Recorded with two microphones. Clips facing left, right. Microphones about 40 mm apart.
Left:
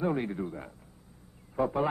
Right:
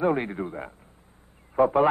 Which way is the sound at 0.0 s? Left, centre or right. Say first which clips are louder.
Right 5 dB; right.